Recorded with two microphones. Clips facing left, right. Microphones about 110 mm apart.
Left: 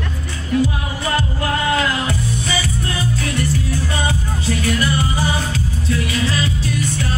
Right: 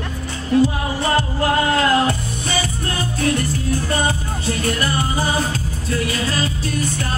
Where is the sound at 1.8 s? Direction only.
45° right (ahead or behind).